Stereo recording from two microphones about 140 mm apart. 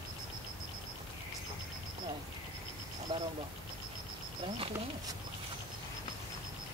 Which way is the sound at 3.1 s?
35° right (ahead or behind).